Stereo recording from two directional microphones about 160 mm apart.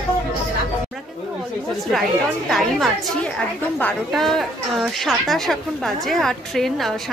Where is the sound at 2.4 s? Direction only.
Centre (ahead or behind).